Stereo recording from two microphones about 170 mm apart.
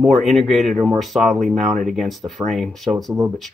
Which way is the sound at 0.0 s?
Centre (ahead or behind).